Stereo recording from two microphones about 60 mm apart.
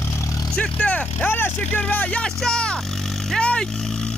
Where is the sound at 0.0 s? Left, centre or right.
Left.